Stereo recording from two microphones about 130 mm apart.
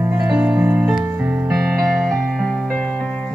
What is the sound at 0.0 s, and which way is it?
Music, 15° right (ahead or behind).